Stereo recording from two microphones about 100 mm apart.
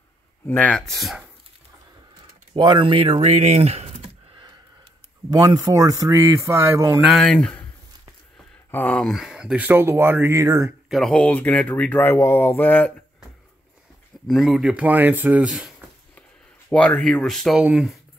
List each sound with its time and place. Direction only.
0.5 s speech: 15° left (ahead or behind)
0.7 s speech: 5° left (ahead or behind)
2.5 s speech: 50° right (ahead or behind); by 3.9 s 90° right
5.3 s speech: 40° right (ahead or behind)
7.1 s speech: 5° left (ahead or behind)
8.7 s speech: 15° left (ahead or behind)
9.0 s speech: 5° right (ahead or behind); by 10.4 s 25° right (ahead or behind)
10.4 s speech: 35° right (ahead or behind)
10.9 s speech: centre (ahead or behind)
11.1 s speech: 15° left (ahead or behind)
14.2 s speech: centre (ahead or behind)
16.7 s speech: 10° left (ahead or behind)
17.6 s speech: 10° right (ahead or behind)